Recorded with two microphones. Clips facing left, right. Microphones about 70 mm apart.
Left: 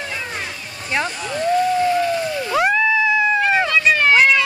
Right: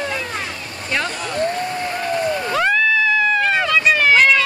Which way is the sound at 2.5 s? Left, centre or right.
Centre.